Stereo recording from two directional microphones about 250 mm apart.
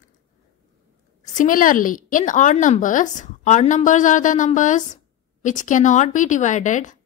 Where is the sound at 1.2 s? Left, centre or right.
Left.